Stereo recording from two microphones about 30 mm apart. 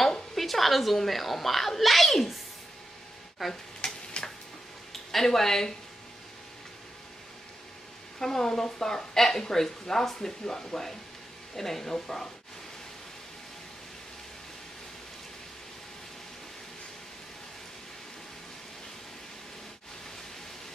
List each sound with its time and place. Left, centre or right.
0.3 s a child's voice: centre
3.8 s stir: left
5.1 s speech: centre
8.2 s speech: centre